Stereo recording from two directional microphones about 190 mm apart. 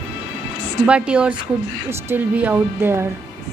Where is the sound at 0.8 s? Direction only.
5° right (ahead or behind).